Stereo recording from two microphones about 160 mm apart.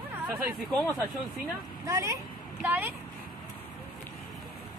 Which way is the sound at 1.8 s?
20° right (ahead or behind).